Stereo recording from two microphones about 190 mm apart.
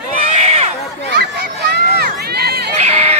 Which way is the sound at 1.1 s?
55° right (ahead or behind).